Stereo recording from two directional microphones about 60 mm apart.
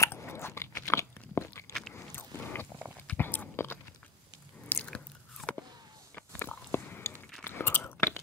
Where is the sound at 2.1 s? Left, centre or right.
Left.